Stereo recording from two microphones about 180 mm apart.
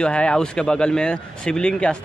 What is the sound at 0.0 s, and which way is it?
A man's voice, 5° left (ahead or behind).